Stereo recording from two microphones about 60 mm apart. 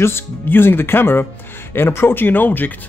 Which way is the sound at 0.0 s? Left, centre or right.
Left.